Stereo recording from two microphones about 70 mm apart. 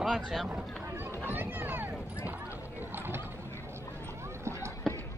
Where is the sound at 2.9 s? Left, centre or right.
Right.